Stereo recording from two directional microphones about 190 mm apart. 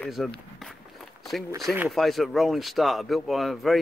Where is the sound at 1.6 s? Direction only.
Centre (ahead or behind).